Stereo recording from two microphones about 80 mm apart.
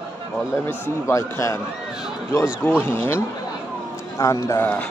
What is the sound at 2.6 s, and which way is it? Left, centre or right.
Speech, left.